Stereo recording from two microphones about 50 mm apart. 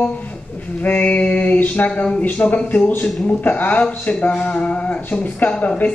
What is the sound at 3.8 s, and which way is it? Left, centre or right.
A man's voice, left.